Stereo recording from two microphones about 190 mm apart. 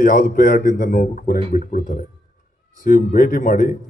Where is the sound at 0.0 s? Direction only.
45° left (ahead or behind).